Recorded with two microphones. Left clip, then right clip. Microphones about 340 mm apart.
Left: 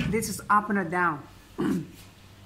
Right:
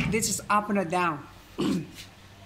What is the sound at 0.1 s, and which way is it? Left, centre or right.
Speech, centre.